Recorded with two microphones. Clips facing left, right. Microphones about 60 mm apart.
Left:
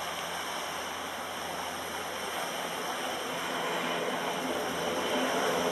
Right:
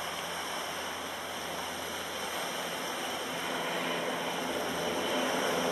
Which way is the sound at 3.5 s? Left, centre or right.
Centre.